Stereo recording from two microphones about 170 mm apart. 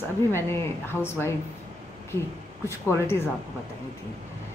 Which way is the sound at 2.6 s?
15° left (ahead or behind).